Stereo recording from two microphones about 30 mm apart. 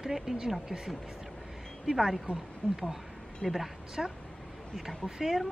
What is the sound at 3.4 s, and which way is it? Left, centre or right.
Speech, right.